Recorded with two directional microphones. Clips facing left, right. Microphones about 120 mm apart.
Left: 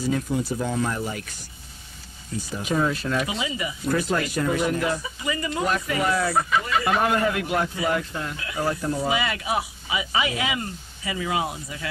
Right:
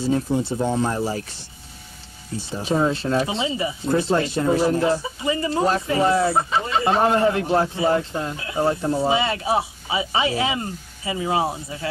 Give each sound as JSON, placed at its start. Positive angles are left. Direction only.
{"t": 0.0, "sound": "speech", "side_deg": -30}